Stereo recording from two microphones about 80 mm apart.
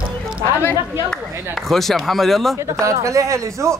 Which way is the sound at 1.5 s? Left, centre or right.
Centre.